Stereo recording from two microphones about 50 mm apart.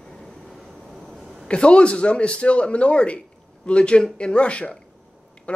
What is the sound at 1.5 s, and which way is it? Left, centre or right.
Speech, left.